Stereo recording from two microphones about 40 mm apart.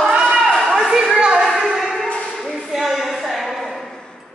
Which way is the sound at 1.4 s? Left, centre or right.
Centre.